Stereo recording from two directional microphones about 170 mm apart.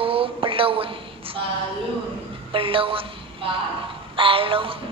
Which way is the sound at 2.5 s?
30° right (ahead or behind).